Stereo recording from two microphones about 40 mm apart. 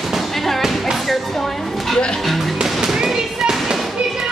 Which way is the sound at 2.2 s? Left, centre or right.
Centre.